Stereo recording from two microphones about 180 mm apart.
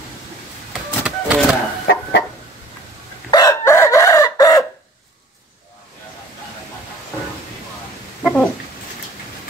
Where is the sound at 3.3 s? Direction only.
20° left (ahead or behind).